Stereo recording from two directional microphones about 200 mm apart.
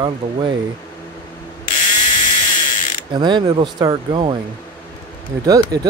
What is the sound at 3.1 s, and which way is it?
Speech, 20° right (ahead or behind).